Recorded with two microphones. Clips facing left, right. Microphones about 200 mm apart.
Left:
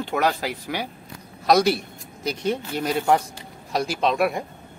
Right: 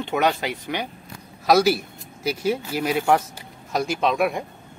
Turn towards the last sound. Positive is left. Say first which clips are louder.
# even
turn(degrees=0)  # may be behind; listen again after turning